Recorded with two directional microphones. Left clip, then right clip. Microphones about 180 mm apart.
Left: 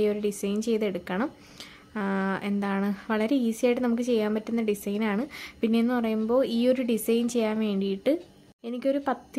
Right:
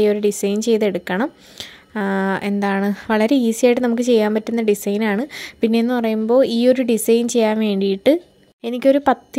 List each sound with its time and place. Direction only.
0.0 s speech: 35° right (ahead or behind)